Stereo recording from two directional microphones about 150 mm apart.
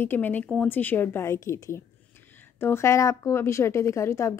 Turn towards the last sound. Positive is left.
turn(degrees=20)  # may be behind; listen again after turning